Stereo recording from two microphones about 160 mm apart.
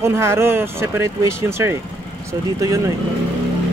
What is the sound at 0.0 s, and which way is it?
Speech, 15° right (ahead or behind).